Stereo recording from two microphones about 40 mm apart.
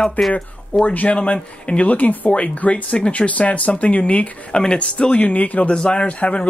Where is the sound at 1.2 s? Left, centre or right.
Left.